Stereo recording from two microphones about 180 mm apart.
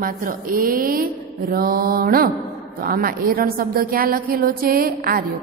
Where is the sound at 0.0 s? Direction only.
50° right (ahead or behind).